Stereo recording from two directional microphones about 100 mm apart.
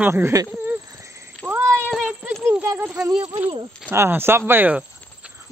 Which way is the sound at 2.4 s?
25° right (ahead or behind).